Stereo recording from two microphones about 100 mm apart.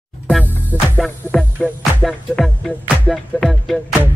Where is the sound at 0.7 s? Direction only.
20° right (ahead or behind).